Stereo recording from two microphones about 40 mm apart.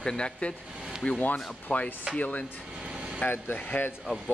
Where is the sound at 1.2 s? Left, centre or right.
Left.